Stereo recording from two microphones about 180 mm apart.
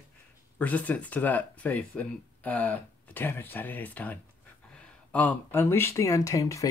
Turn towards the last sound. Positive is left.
turn(degrees=15)  # may be behind; listen again after turning